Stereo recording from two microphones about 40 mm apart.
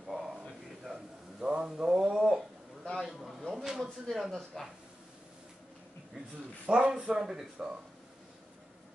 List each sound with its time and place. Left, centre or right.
0.0 s a sound: centre
4.6 s speech: centre
6.6 s speech: right